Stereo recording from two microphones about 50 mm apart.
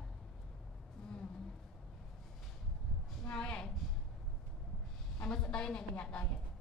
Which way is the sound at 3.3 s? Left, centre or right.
Centre.